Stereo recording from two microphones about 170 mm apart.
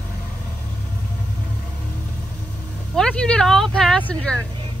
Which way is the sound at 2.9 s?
5° left (ahead or behind).